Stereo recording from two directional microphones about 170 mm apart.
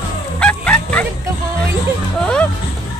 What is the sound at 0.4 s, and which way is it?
Bow-wow, 5° left (ahead or behind).